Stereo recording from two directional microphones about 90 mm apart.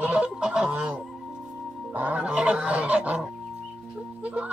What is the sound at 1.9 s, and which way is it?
Goose, 15° right (ahead or behind).